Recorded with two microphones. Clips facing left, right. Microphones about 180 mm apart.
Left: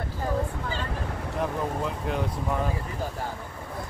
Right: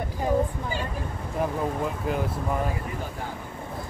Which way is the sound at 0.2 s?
10° right (ahead or behind).